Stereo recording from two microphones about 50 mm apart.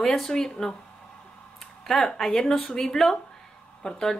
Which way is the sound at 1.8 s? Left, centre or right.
Centre.